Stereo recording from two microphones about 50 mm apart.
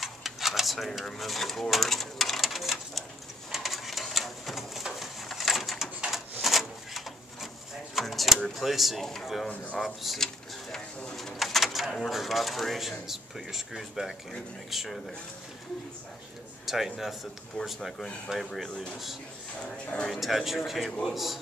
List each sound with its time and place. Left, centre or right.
0.0 s a sound: centre
1.0 s speech: centre
3.5 s a sound: centre
8.5 s speech: centre
10.2 s a sound: centre
11.1 s bird: centre
12.1 s speech: centre
16.6 s speech: centre
17.6 s speech: centre
18.4 s speech: centre
19.6 s speech: left
20.1 s speech: centre